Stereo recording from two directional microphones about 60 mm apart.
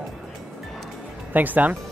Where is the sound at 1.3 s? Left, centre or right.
Right.